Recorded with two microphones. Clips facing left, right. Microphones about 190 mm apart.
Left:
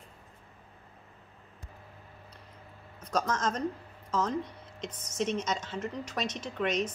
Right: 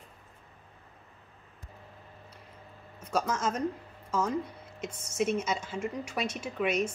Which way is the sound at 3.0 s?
10° right (ahead or behind).